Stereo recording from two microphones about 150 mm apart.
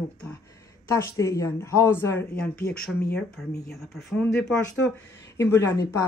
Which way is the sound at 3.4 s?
Centre (ahead or behind).